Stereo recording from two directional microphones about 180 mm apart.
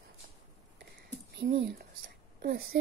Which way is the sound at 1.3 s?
70° right (ahead or behind).